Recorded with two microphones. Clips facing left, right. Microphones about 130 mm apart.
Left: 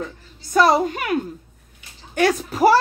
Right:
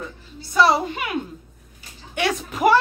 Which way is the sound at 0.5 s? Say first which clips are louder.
Left 2 dB; 45° left (ahead or behind).